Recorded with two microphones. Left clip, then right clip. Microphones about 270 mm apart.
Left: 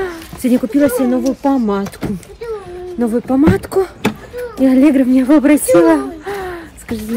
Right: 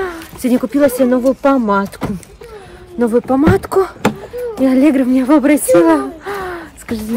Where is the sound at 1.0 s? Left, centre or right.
Centre.